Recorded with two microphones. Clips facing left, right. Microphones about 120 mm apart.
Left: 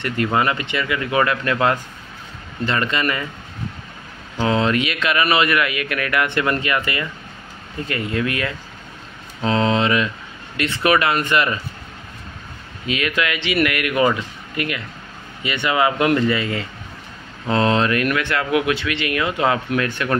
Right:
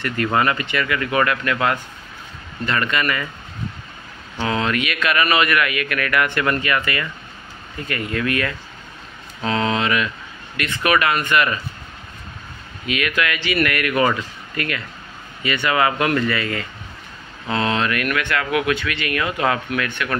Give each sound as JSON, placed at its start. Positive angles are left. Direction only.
{"t": 0.0, "sound": "speech", "side_deg": 20}
{"t": 4.4, "sound": "speech", "side_deg": 30}
{"t": 12.8, "sound": "speech", "side_deg": 25}
{"t": 17.5, "sound": "speech", "side_deg": 35}